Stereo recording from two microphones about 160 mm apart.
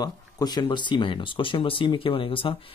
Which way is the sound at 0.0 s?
25° left (ahead or behind).